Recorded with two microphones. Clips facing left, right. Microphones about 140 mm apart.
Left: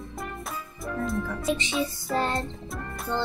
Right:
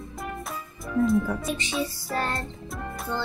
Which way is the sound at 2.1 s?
20° left (ahead or behind).